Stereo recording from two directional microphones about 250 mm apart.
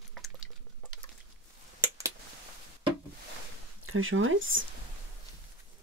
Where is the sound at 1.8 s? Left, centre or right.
Centre.